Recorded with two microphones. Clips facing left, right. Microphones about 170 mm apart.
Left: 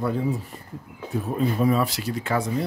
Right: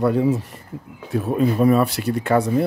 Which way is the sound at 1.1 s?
75° right (ahead or behind).